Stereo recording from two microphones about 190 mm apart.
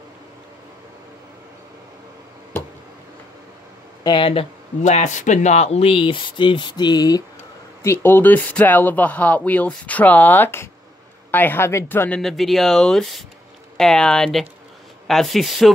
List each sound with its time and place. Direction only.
4.0 s speech: 25° left (ahead or behind); by 15.7 s centre (ahead or behind)